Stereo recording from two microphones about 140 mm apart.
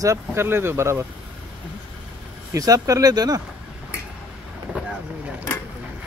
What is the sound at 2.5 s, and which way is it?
Speech, 25° right (ahead or behind).